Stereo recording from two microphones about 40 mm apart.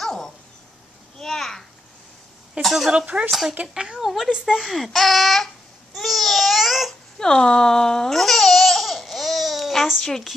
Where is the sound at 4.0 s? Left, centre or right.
Centre.